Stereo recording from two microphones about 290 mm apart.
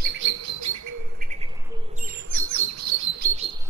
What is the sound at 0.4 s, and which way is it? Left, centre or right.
Bird, right.